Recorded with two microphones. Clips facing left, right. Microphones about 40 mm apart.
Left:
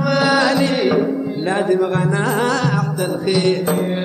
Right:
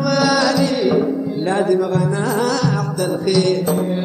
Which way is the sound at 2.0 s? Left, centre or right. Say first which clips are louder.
Left 1 dB; left.